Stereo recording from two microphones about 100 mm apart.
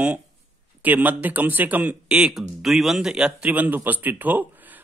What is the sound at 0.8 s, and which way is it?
A man's voice, 15° right (ahead or behind).